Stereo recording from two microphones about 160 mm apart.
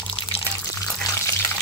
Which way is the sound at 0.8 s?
15° left (ahead or behind).